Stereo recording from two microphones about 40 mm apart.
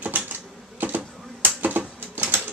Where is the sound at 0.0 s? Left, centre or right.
Right.